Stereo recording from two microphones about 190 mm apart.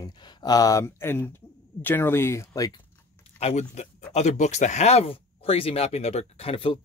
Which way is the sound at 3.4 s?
35° left (ahead or behind).